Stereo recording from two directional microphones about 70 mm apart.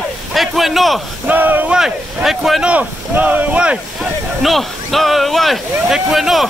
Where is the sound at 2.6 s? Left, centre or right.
Centre.